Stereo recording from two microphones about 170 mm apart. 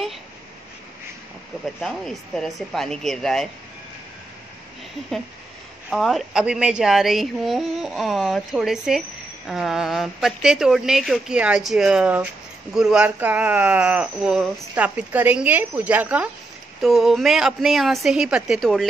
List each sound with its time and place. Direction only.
1.8 s speech: 5° left (ahead or behind)
5.9 s speech: centre (ahead or behind)